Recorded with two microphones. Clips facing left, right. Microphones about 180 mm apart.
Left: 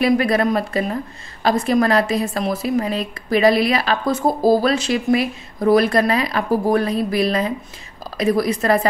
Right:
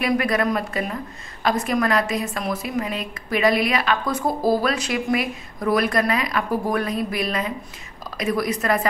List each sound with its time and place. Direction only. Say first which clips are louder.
0.0 s a woman's voice: left 4 dB; 30° left (ahead or behind)